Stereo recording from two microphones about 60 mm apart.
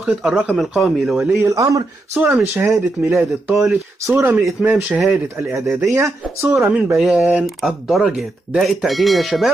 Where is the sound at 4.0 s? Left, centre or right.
Right.